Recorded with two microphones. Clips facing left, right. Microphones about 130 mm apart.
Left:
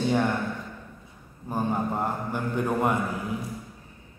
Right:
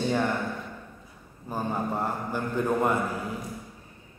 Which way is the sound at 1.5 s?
15° left (ahead or behind).